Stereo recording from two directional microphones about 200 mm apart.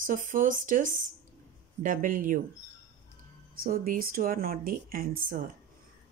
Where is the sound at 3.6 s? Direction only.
45° right (ahead or behind).